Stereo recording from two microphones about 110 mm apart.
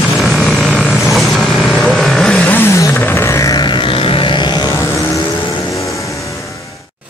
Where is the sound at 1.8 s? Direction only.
5° left (ahead or behind).